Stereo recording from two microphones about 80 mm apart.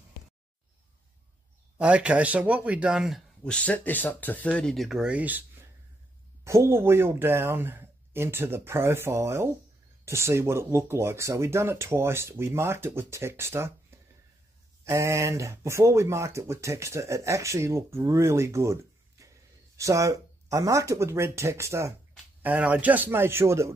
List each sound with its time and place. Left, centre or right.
1.8 s speech: centre
3.4 s speech: centre
4.7 s speech: centre
5.1 s a man's voice: right
6.4 s speech: right
22.4 s a man's voice: right